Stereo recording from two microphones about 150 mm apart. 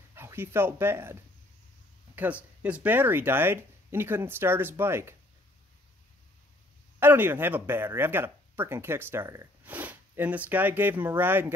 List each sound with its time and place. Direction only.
0.1 s speech: 15° right (ahead or behind)
2.1 s speech: 10° right (ahead or behind)
7.0 s speech: 15° right (ahead or behind)